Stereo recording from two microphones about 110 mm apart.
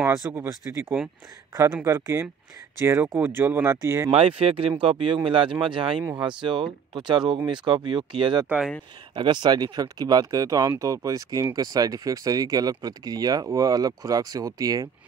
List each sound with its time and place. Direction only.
0.0 s speech: 20° right (ahead or behind)
3.6 s speech: 30° right (ahead or behind)
4.1 s speech: 60° right (ahead or behind); by 14.9 s 35° right (ahead or behind)